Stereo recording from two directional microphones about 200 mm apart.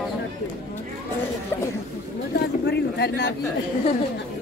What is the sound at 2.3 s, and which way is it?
Speech, 55° left (ahead or behind).